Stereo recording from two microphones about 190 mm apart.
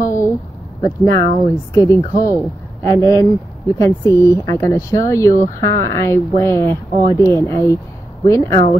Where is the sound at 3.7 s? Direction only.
15° left (ahead or behind).